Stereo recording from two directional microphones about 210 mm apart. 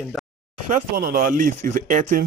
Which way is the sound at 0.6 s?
40° right (ahead or behind).